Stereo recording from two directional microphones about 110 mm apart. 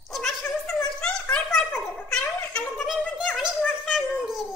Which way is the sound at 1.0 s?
5° left (ahead or behind).